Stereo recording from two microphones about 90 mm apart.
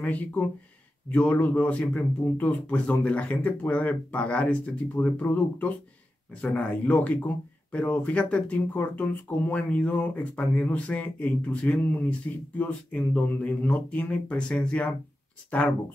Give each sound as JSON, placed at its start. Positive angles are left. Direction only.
{"t": 0.0, "sound": "speech", "side_deg": 15}